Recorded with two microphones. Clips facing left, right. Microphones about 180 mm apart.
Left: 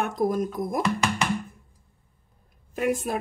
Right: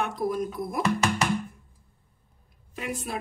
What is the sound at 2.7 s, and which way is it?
Speech, 50° left (ahead or behind).